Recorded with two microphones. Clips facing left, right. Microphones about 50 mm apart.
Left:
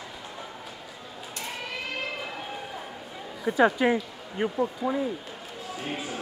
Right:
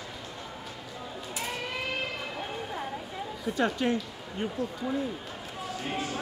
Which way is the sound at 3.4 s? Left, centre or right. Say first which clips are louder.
Left 6 dB; centre.